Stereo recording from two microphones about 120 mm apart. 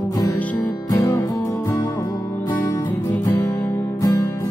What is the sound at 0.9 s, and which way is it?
Music, 30° left (ahead or behind).